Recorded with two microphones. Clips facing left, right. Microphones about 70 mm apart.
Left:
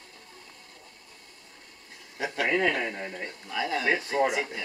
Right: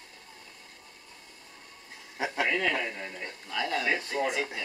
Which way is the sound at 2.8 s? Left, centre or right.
Left.